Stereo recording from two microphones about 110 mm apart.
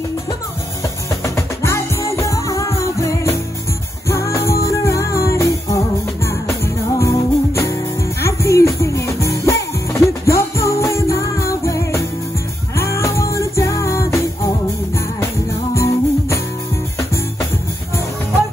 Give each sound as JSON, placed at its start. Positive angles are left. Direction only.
{"t": 1.2, "sound": "music", "side_deg": 25}
{"t": 15.7, "sound": "music", "side_deg": 25}